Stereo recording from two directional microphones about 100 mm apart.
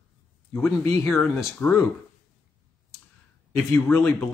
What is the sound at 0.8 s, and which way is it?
Speech, 20° left (ahead or behind).